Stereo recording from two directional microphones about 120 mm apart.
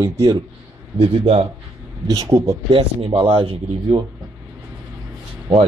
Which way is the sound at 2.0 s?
30° right (ahead or behind).